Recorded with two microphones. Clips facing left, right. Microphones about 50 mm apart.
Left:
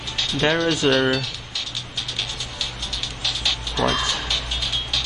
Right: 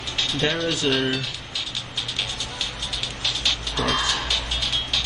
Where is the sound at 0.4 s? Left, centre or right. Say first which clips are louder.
Left 5 dB; left.